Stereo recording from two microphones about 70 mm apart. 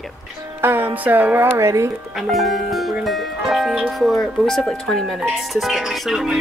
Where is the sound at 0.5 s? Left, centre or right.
Right.